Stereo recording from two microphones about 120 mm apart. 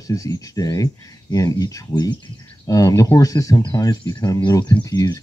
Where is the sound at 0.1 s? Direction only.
30° left (ahead or behind).